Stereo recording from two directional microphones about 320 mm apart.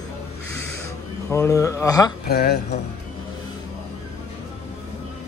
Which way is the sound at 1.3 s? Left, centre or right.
Centre.